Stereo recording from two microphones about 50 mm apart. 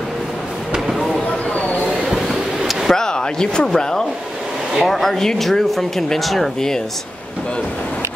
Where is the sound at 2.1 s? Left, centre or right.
Centre.